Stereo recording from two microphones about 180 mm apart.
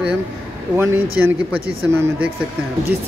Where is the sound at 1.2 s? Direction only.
10° right (ahead or behind).